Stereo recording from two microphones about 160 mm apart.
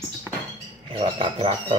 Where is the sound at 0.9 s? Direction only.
35° right (ahead or behind).